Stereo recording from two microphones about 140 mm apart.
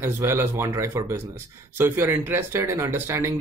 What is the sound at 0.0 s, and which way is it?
A man's voice, 15° right (ahead or behind).